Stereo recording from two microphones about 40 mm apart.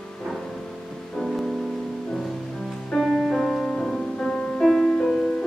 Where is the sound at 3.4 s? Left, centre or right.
Centre.